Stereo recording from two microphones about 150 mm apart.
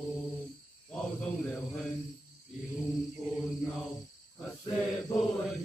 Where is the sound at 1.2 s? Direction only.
5° left (ahead or behind).